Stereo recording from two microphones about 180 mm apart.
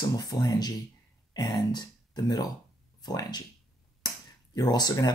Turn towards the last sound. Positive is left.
turn(degrees=20)  # may be behind; listen again after turning